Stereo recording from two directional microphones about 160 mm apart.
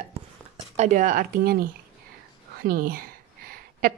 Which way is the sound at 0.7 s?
50° right (ahead or behind).